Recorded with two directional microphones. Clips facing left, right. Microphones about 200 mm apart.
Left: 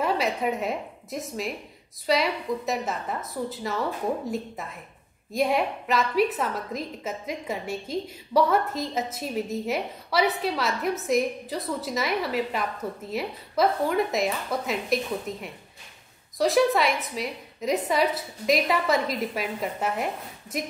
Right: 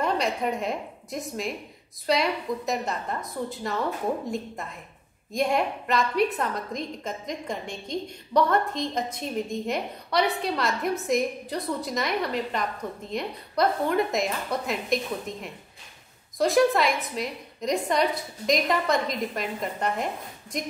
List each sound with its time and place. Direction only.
0.0 s a woman's voice: 5° left (ahead or behind)
5.3 s a woman's voice: centre (ahead or behind)